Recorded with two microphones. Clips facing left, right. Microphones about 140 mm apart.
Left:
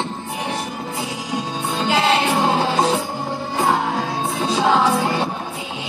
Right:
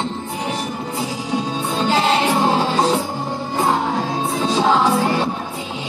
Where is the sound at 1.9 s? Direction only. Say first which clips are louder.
Even; 35° right (ahead or behind).